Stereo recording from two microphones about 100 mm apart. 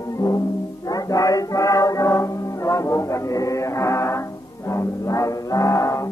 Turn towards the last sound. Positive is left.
turn(degrees=30)  # may be behind; listen again after turning